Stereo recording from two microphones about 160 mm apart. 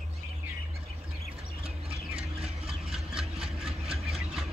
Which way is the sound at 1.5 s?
40° right (ahead or behind).